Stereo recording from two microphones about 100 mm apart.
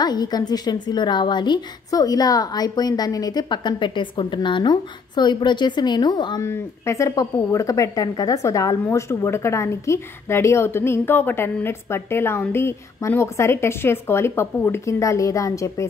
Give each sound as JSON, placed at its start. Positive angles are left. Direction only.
{"t": 0.0, "sound": "a woman's voice", "side_deg": 45}
{"t": 6.4, "sound": "a woman's voice", "side_deg": 30}